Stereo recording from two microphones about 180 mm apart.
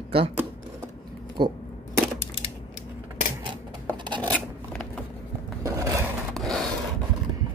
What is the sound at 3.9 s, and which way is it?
Filing, 25° right (ahead or behind).